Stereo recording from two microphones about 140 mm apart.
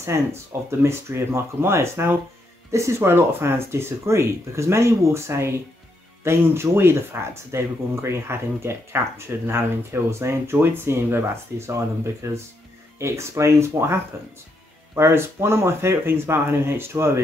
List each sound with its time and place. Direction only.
0.0 s speech: 20° right (ahead or behind)